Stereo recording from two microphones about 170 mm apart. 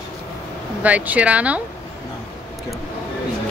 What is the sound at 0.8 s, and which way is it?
Speech, 10° right (ahead or behind).